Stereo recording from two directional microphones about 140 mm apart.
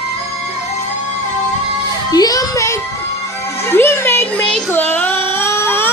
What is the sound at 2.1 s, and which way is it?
Speech, 25° left (ahead or behind).